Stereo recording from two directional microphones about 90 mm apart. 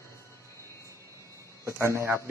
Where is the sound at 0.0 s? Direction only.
35° left (ahead or behind).